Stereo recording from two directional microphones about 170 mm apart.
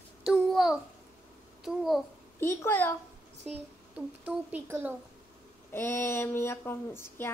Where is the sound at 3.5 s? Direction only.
10° right (ahead or behind).